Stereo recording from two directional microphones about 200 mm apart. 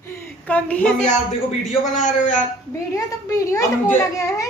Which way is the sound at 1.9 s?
40° left (ahead or behind).